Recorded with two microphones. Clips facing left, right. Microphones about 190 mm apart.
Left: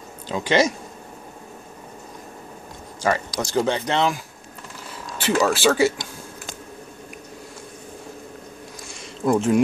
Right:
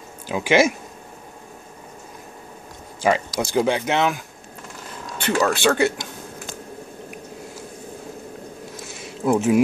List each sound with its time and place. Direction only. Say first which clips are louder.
0.3 s speech: right 2 dB; 10° right (ahead or behind)
3.0 s speech: right 3 dB; 15° right (ahead or behind)
5.2 s speech: even; 5° left (ahead or behind)
8.8 s a sound: even; 5° right (ahead or behind)